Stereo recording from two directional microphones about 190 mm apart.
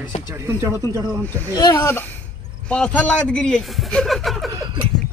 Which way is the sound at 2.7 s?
5° left (ahead or behind).